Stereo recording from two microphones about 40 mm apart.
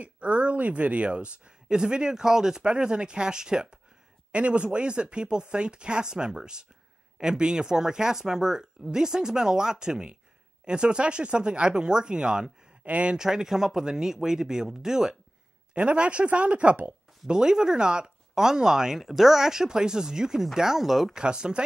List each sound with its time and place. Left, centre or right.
0.0 s speech: right; by 3.8 s centre
4.3 s speech: right
12.8 s speech: right
13.1 s speech: centre
15.7 s speech: right
17.3 s speech: centre
21.1 s speech: right